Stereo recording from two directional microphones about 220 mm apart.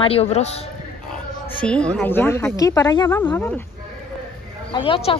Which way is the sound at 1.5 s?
5° left (ahead or behind).